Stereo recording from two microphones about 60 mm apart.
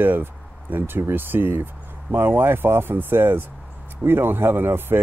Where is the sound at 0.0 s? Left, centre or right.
Right.